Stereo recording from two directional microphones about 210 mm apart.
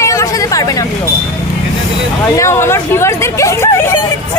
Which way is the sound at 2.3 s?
15° left (ahead or behind).